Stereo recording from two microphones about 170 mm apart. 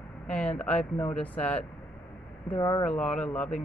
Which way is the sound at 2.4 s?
25° left (ahead or behind).